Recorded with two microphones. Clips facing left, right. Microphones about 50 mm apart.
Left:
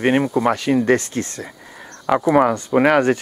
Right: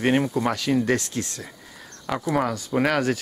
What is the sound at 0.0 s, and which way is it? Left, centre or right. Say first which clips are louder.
Speech: left 5 dB; centre.